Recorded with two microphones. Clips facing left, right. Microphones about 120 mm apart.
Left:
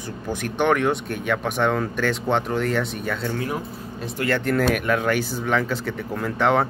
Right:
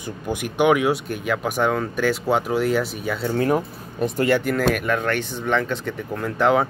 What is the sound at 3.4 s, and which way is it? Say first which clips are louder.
Speech: right 7 dB; 50° right (ahead or behind).